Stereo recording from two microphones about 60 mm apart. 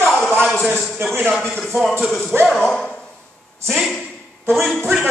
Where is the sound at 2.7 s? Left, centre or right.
Centre.